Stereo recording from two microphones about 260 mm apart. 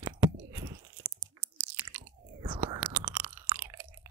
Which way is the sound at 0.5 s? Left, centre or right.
Centre.